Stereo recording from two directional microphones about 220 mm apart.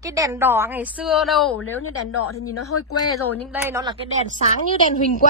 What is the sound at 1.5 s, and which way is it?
Speech, 85° left.